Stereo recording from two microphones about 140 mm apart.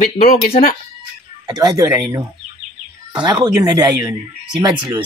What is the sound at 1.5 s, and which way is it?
Speech, 25° right (ahead or behind).